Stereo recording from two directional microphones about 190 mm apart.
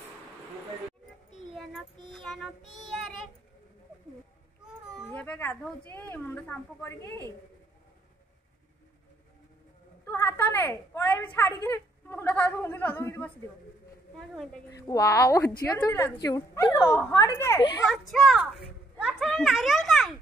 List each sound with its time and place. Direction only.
2.1 s child singing: centre (ahead or behind)
4.9 s baby cry: centre (ahead or behind)
5.2 s a woman's voice: 10° left (ahead or behind)
10.0 s a woman's voice: 15° left (ahead or behind)
14.8 s a woman's voice: 20° left (ahead or behind)
17.8 s a child's voice: centre (ahead or behind)